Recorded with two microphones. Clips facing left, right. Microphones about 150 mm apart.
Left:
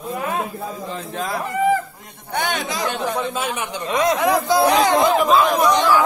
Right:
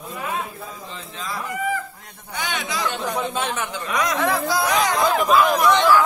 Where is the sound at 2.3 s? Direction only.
55° left (ahead or behind).